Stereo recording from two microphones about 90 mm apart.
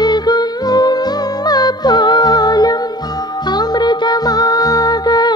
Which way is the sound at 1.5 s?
50° left (ahead or behind).